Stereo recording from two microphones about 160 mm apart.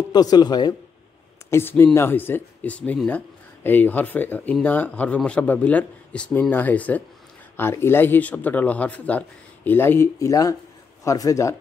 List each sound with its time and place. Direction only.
0.1 s speech: 25° left (ahead or behind)
1.5 s speech: 15° left (ahead or behind)